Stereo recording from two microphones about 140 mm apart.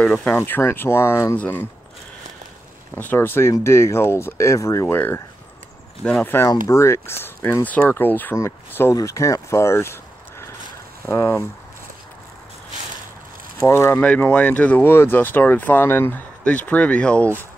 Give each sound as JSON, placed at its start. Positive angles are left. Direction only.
{"t": 0.0, "sound": "speech", "side_deg": 10}
{"t": 3.0, "sound": "speech", "side_deg": 15}
{"t": 11.1, "sound": "speech", "side_deg": 20}
{"t": 13.6, "sound": "speech", "side_deg": 20}